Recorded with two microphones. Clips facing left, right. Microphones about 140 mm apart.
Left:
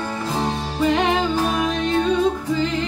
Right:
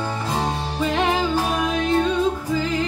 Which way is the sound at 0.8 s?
Centre (ahead or behind).